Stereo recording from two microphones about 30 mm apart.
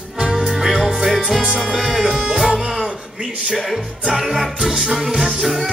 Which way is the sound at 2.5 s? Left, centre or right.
Centre.